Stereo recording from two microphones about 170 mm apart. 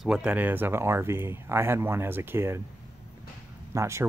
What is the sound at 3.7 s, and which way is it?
Speech, 15° right (ahead or behind).